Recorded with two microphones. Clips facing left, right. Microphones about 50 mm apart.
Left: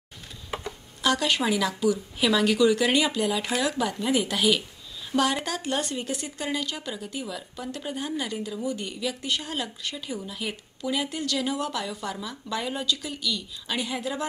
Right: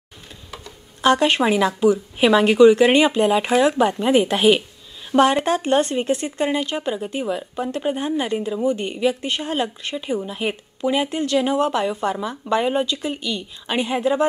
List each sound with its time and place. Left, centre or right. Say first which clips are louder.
1.0 s a woman's voice: right 8 dB; right